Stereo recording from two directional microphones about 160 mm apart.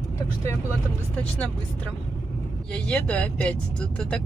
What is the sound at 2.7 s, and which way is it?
Speech, 5° left (ahead or behind).